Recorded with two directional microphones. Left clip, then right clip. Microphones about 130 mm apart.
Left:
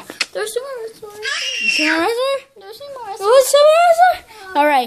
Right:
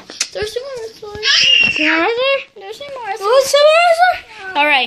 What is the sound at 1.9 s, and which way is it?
A woman's voice, 20° left (ahead or behind).